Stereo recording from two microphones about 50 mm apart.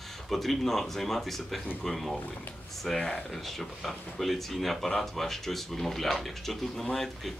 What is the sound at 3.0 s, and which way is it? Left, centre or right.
Speech, left.